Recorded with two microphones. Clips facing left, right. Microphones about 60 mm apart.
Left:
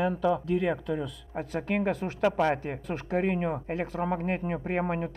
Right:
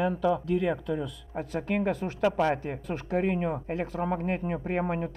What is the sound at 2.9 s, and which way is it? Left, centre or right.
Speech, centre.